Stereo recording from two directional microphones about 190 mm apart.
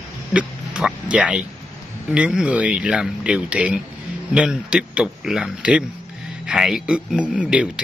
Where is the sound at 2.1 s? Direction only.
5° right (ahead or behind).